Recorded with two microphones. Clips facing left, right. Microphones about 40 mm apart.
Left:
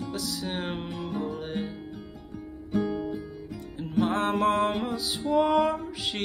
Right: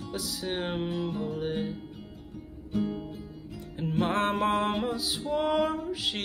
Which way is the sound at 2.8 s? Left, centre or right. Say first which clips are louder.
Left 3 dB; left.